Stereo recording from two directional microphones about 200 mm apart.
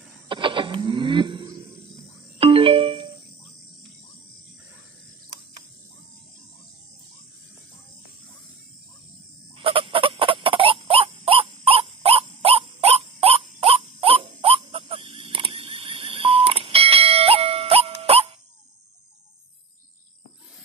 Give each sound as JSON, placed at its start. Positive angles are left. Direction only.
{"t": 0.3, "sound": "wild animals", "side_deg": -25}
{"t": 2.3, "sound": "music", "side_deg": -25}
{"t": 9.6, "sound": "fowl", "side_deg": -25}